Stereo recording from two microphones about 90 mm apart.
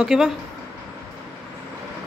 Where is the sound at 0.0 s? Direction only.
5° right (ahead or behind).